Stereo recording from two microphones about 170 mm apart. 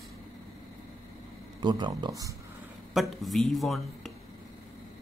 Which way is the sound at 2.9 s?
Centre (ahead or behind).